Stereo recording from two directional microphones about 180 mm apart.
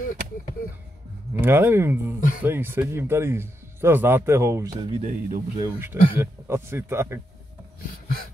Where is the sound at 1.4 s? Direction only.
10° right (ahead or behind).